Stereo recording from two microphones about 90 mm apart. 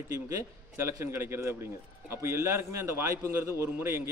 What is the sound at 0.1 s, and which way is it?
A man's voice, 35° right (ahead or behind).